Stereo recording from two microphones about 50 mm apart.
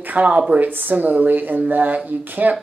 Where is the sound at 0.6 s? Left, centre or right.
Right.